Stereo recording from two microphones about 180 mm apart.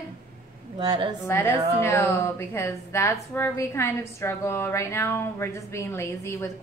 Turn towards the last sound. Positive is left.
turn(degrees=15)  # may be behind; listen again after turning